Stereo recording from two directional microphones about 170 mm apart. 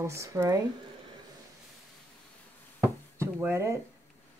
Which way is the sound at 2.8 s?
10° right (ahead or behind).